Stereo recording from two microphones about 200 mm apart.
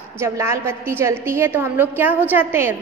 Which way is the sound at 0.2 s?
15° right (ahead or behind).